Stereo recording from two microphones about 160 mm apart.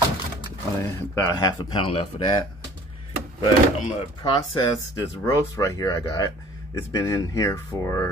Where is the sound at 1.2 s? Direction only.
20° left (ahead or behind).